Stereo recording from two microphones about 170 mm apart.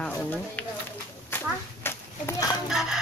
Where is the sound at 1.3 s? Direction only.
15° left (ahead or behind).